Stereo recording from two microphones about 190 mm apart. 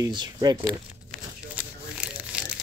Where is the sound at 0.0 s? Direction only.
20° right (ahead or behind).